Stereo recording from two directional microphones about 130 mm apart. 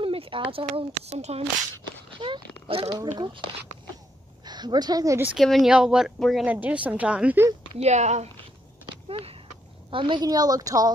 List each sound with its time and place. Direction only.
0.0 s a sound: 45° right (ahead or behind)
0.7 s speech: 55° right (ahead or behind)
2.1 s speech: 40° right (ahead or behind)
2.9 s speech: 35° right (ahead or behind)
4.5 s a woman's voice: 35° right (ahead or behind)
5.4 s speech: centre (ahead or behind)
6.4 s a woman's voice: 10° right (ahead or behind)
7.8 s speech: 60° right (ahead or behind)
8.8 s a sound: 45° right (ahead or behind)
9.8 s a woman's voice: 40° right (ahead or behind)